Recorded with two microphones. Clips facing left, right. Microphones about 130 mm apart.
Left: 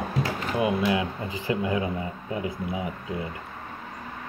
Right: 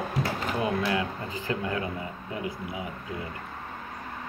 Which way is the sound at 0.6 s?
10° left (ahead or behind).